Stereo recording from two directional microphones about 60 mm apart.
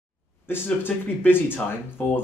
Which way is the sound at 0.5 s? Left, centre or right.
Left.